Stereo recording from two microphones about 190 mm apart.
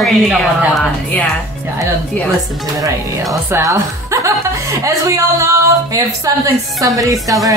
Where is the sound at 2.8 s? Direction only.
15° right (ahead or behind).